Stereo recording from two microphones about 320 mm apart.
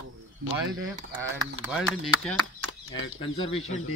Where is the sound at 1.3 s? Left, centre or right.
Centre.